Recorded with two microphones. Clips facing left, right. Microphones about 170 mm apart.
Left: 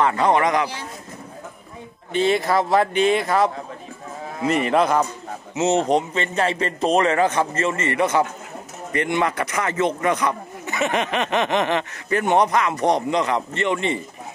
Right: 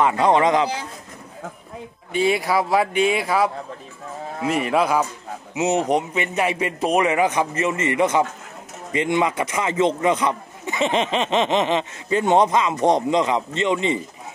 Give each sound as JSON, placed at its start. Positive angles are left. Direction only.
{"t": 0.0, "sound": "a man's voice", "side_deg": -20}
{"t": 2.1, "sound": "a man's voice", "side_deg": -5}